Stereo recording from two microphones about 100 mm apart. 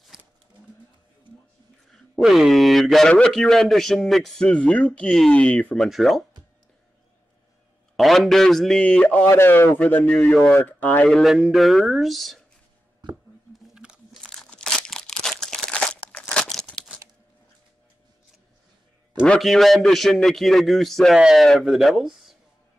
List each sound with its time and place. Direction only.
0.1 s a sound: 5° right (ahead or behind)
2.1 s a man's voice: centre (ahead or behind); by 5.9 s 15° left (ahead or behind)
5.9 s a man's voice: centre (ahead or behind)
7.9 s a man's voice: centre (ahead or behind)
9.3 s a man's voice: 25° left (ahead or behind)
10.1 s a man's voice: 5° left (ahead or behind)
10.5 s a man's voice: 15° left (ahead or behind)
11.1 s a man's voice: centre (ahead or behind)
13.7 s crunch: 5° right (ahead or behind)
19.2 s a man's voice: 5° left (ahead or behind)